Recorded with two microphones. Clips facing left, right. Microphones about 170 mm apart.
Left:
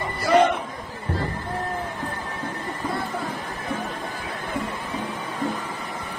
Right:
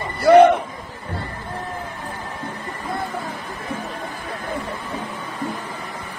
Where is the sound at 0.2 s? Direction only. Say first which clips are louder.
Right 8 dB; 65° right (ahead or behind).